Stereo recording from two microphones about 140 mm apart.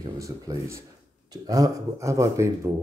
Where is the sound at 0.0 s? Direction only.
25° right (ahead or behind).